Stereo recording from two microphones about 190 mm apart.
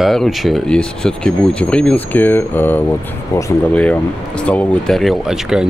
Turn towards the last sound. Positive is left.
turn(degrees=-5)  # may be behind; listen again after turning